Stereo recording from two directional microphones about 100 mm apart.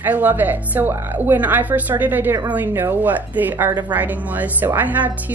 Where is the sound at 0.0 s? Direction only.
20° right (ahead or behind).